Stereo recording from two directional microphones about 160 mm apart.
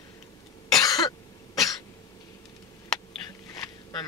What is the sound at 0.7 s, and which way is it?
Cough, 20° left (ahead or behind).